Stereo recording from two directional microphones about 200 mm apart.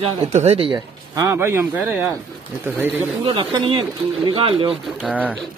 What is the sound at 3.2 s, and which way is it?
Speech, 25° right (ahead or behind).